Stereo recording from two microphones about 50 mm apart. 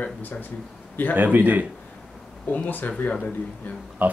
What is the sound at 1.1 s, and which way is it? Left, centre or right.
Speech, right.